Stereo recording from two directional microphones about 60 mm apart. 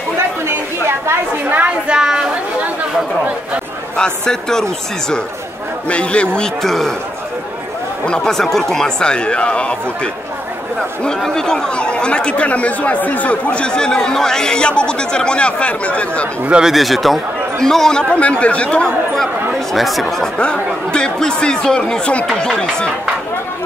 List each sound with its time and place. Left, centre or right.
0.5 s a sound: right
1.9 s a sound: centre
3.9 s speech: centre
5.9 s speech: left
6.6 s speech: centre
8.0 s speech: centre
11.1 s speech: centre
16.4 s speech: centre
16.7 s speech: centre
18.1 s speech: left
19.7 s speech: centre
20.3 s speech: centre